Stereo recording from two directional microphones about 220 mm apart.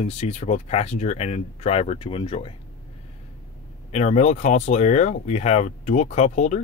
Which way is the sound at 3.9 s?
30° left (ahead or behind).